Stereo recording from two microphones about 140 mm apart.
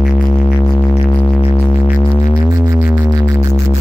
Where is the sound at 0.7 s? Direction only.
30° left (ahead or behind).